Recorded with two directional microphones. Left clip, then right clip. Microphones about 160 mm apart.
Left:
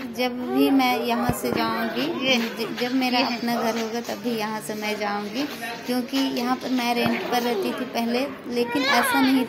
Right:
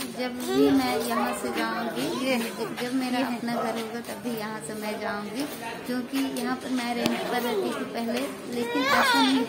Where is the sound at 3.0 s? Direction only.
25° left (ahead or behind).